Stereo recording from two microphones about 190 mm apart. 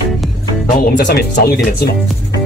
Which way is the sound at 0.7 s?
55° left (ahead or behind).